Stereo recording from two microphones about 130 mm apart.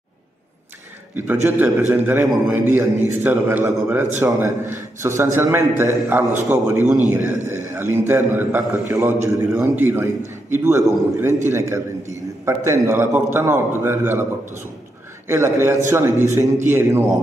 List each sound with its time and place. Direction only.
1.1 s a man's voice: 15° right (ahead or behind)
7.4 s a sound: 20° right (ahead or behind)
8.1 s a man's voice: 15° right (ahead or behind)
15.2 s a man's voice: 20° right (ahead or behind)